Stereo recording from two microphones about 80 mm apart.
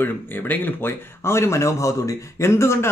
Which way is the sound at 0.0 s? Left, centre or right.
Left.